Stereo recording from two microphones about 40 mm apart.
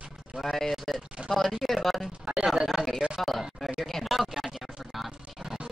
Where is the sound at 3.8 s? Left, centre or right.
Centre.